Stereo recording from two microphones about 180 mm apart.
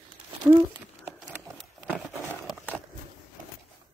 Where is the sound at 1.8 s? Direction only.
10° right (ahead or behind).